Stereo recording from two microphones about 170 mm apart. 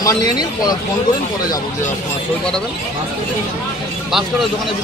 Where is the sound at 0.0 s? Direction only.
20° left (ahead or behind).